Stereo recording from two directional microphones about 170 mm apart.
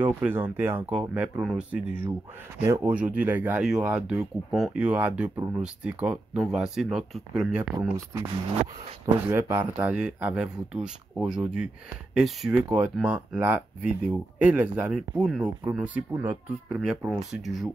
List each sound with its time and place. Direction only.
0.0 s speech: 10° right (ahead or behind)
7.9 s speech: 15° right (ahead or behind); by 17.6 s centre (ahead or behind)